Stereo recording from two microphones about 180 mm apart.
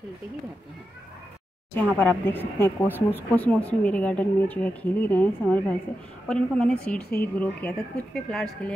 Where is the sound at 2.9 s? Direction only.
10° right (ahead or behind).